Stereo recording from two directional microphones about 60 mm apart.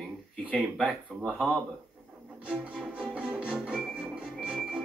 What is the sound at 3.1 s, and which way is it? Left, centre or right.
Music, centre.